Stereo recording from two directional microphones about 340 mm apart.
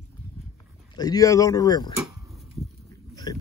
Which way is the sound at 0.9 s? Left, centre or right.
Centre.